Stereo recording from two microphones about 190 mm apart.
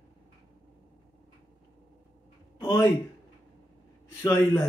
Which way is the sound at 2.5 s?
20° left (ahead or behind).